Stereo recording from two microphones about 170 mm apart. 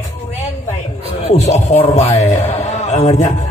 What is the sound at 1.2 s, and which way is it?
A man's voice, 40° left (ahead or behind).